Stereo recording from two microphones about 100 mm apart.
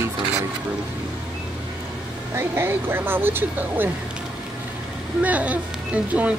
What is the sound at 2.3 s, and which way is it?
Speech, 25° right (ahead or behind).